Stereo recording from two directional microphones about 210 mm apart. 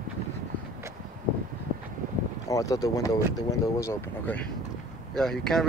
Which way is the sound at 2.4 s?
15° left (ahead or behind).